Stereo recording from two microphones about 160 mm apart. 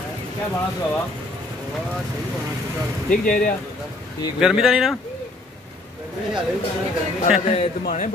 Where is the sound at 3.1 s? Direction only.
60° left (ahead or behind).